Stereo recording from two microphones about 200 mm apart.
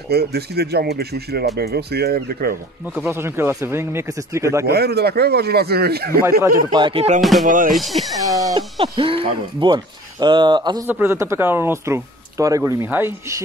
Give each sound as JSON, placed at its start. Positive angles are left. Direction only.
{"t": 0.1, "sound": "speech", "side_deg": -50}
{"t": 3.0, "sound": "speech", "side_deg": -10}
{"t": 4.6, "sound": "speech", "side_deg": -50}
{"t": 6.4, "sound": "speech", "side_deg": -20}
{"t": 7.2, "sound": "speech", "side_deg": 0}
{"t": 7.4, "sound": "speech", "side_deg": -40}
{"t": 7.7, "sound": "speech", "side_deg": 0}
{"t": 8.3, "sound": "speech", "side_deg": -15}
{"t": 10.9, "sound": "speech", "side_deg": -10}